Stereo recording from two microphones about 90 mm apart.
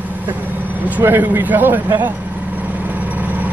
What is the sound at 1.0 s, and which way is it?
Speech, 25° right (ahead or behind).